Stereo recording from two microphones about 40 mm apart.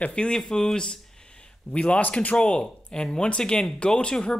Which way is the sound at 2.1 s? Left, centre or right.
Left.